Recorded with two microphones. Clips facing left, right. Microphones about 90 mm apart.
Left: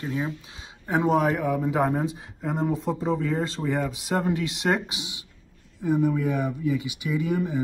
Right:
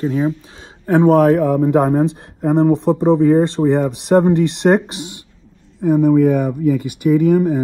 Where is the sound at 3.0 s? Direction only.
25° right (ahead or behind).